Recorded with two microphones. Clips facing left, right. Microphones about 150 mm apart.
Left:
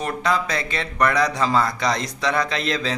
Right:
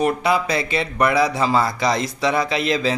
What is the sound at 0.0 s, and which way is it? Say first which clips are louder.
Speech: right 4 dB; 10° right (ahead or behind).